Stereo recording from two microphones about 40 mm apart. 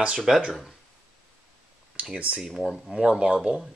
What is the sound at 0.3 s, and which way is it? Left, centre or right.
Speech, centre.